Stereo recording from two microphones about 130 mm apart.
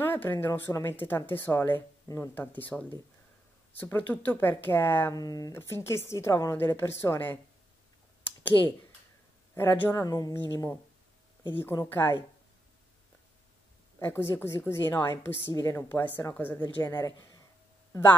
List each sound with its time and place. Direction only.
0.0 s speech: 15° left (ahead or behind)
3.8 s speech: 15° left (ahead or behind)
5.2 s speech: 30° left (ahead or behind)
8.6 s speech: 30° right (ahead or behind)
9.6 s speech: 15° left (ahead or behind)
10.0 s speech: 30° left (ahead or behind)
10.5 s speech: 20° left (ahead or behind)
13.9 s speech: 20° left (ahead or behind)
16.8 s speech: 25° left (ahead or behind)